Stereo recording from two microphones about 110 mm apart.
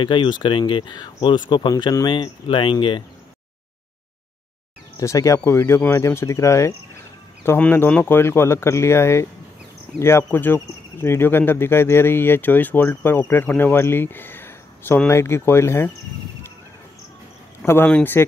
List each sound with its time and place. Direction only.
0.0 s speech: 50° left (ahead or behind)
5.0 s speech: 30° left (ahead or behind)
17.8 s speech: 15° left (ahead or behind)